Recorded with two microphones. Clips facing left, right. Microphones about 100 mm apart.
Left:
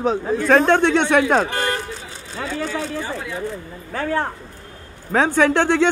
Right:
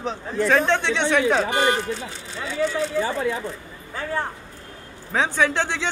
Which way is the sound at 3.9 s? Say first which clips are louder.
Left 5 dB; 70° left (ahead or behind).